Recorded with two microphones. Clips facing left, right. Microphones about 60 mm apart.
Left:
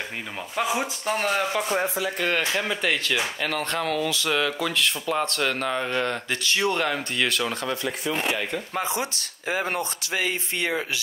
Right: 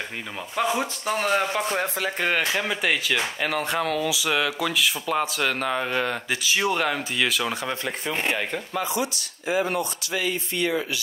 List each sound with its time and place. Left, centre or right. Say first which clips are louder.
0.6 s speech: right 1 dB; centre
8.7 s speech: right 2 dB; left
9.5 s speech: right 2 dB; left